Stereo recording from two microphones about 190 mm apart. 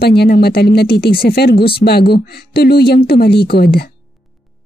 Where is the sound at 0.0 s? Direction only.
55° left (ahead or behind).